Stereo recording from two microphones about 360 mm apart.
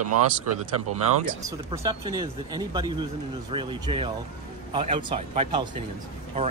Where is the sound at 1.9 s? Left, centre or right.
Centre.